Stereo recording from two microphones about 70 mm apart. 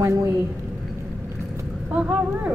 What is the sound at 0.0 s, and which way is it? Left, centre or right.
Speech, right.